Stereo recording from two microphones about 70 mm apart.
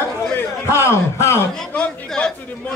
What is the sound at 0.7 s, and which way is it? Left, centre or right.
Speech, left.